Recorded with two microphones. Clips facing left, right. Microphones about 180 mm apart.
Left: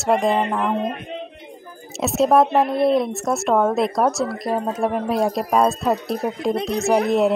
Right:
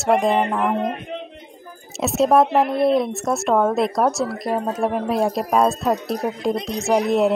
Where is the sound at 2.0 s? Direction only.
Centre (ahead or behind).